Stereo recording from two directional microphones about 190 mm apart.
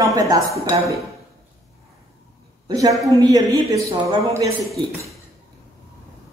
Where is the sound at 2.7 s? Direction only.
20° right (ahead or behind).